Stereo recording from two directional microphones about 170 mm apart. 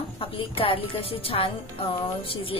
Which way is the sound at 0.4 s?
30° left (ahead or behind).